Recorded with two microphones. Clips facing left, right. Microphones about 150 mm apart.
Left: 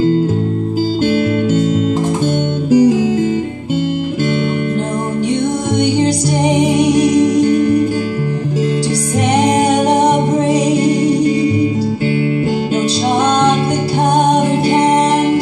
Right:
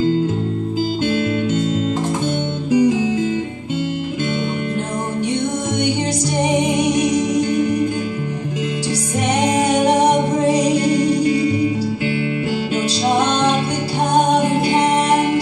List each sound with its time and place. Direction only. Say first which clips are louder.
1.0 s music: left 6 dB; 50° left (ahead or behind)
2.7 s music: left 5 dB; 35° left (ahead or behind)